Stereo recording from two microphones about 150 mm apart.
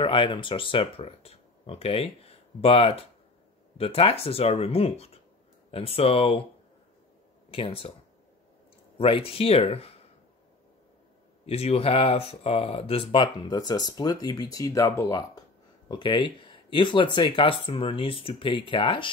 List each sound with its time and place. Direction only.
0.0 s speech: 35° left (ahead or behind)
7.5 s speech: 40° left (ahead or behind)
8.9 s speech: 40° left (ahead or behind)
11.4 s speech: 45° left (ahead or behind)